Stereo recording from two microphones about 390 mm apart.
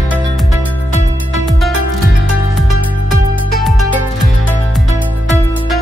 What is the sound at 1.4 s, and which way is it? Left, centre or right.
Music, centre.